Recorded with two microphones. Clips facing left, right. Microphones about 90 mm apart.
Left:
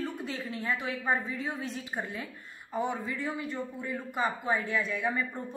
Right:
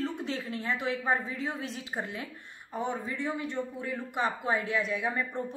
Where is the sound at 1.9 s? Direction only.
10° right (ahead or behind).